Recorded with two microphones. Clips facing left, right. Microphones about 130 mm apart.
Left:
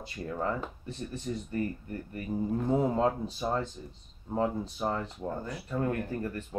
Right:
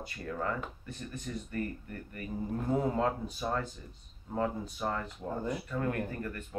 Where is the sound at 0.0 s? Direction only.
25° left (ahead or behind).